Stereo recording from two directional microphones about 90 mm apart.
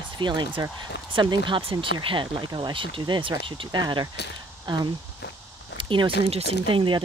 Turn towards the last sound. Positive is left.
turn(degrees=-70)  # may be behind; listen again after turning